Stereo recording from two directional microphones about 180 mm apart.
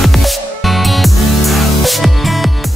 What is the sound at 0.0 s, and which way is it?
Music, centre (ahead or behind).